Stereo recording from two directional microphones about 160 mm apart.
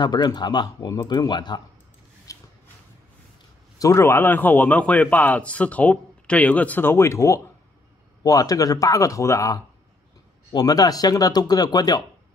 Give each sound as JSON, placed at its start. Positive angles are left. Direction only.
{"t": 0.0, "sound": "speech", "side_deg": 25}
{"t": 2.3, "sound": "a sound", "side_deg": 20}
{"t": 3.8, "sound": "a man's voice", "side_deg": 15}